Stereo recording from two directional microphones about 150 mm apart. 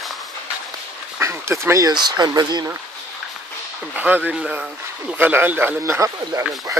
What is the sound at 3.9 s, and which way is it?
Speech, 10° right (ahead or behind).